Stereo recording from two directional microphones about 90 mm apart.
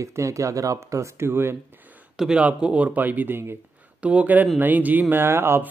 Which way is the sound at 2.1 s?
10° right (ahead or behind).